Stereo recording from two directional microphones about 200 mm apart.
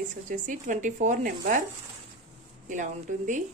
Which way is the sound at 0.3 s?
40° right (ahead or behind).